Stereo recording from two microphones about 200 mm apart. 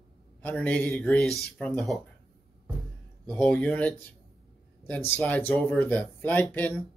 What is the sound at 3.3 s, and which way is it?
Speech, 5° left (ahead or behind).